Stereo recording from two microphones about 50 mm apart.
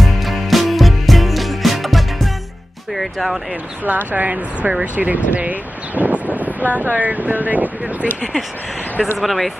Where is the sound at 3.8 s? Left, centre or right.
Right.